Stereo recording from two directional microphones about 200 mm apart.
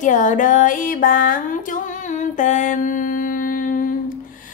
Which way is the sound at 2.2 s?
40° left (ahead or behind).